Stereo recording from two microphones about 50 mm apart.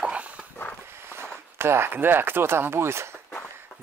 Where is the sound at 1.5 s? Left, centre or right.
Right.